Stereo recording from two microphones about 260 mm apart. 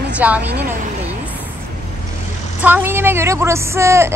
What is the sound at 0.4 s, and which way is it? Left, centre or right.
Speech, right.